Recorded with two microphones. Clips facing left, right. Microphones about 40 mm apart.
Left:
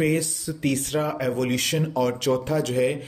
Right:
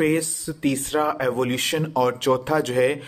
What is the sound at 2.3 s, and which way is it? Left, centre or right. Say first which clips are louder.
Speech: right 2 dB; right.